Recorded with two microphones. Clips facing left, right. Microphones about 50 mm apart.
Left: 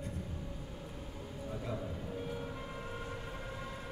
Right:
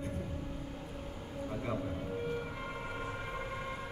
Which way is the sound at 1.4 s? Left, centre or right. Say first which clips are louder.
Right 4 dB; right.